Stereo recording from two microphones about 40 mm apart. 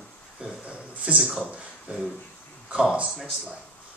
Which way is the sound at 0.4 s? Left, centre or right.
Right.